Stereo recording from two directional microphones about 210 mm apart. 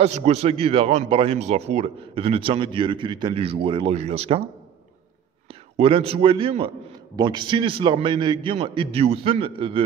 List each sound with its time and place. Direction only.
0.0 s a man's voice: 30° right (ahead or behind)
5.8 s a man's voice: 25° right (ahead or behind)